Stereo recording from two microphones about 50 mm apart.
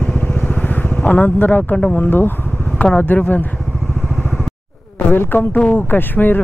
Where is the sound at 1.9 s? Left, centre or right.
Left.